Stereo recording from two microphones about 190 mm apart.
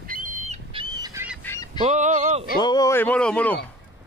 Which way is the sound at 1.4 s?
10° left (ahead or behind).